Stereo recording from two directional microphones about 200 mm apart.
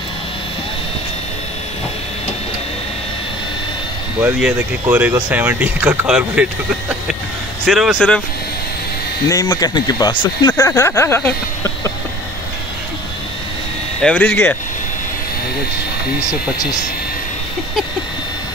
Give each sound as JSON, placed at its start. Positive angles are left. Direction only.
{"t": 4.2, "sound": "speech", "side_deg": -5}
{"t": 7.6, "sound": "speech", "side_deg": 0}
{"t": 9.3, "sound": "speech", "side_deg": 20}
{"t": 14.0, "sound": "speech", "side_deg": 10}